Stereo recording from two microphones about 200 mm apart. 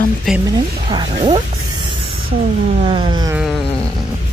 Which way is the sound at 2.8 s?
25° right (ahead or behind).